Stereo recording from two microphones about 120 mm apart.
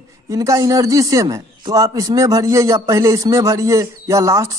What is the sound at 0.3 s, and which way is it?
A man's voice, 25° right (ahead or behind).